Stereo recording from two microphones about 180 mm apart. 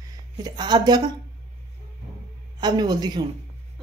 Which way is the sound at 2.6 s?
25° right (ahead or behind).